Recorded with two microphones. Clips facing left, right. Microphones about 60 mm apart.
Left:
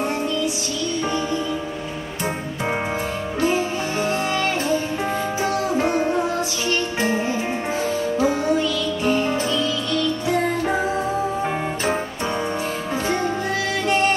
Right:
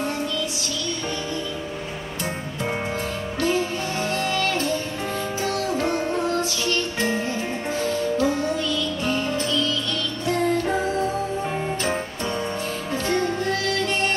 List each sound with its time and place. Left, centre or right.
3.3 s music: centre